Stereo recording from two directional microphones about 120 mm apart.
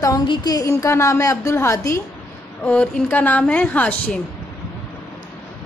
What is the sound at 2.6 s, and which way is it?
A woman's voice, 10° left (ahead or behind).